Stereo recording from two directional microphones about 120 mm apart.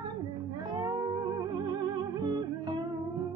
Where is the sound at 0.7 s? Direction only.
30° right (ahead or behind).